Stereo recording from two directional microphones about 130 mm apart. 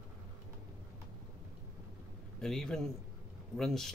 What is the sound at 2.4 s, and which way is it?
Speech, 5° left (ahead or behind).